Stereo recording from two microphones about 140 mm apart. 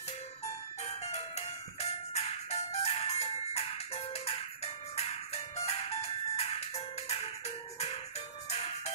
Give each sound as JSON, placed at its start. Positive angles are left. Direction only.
{"t": 1.1, "sound": "music", "side_deg": 50}